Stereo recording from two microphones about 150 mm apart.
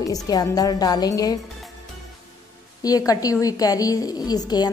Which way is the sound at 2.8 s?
25° left (ahead or behind).